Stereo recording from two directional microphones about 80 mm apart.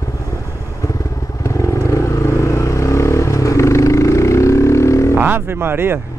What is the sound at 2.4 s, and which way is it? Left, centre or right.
Vehicle, left.